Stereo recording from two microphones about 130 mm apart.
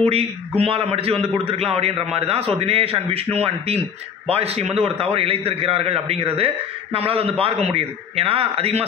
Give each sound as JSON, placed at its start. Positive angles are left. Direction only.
{"t": 0.0, "sound": "a man's voice", "side_deg": -50}